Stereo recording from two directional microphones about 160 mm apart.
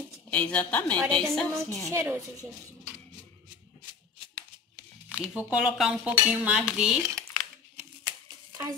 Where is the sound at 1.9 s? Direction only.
20° right (ahead or behind).